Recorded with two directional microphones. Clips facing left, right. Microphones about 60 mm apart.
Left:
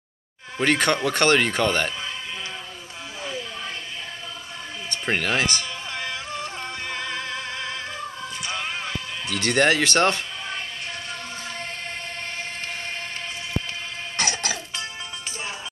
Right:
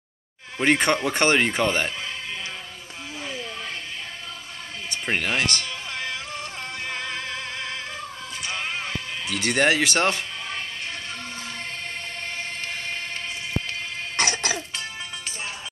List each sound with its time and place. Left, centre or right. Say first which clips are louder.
0.6 s speech: even; centre
5.0 s speech: left 1 dB; centre
8.6 s music: even; centre
9.3 s speech: left 1 dB; centre
14.2 s music: right 1 dB; right